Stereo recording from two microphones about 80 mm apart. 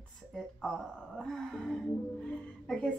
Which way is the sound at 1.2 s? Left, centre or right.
Centre.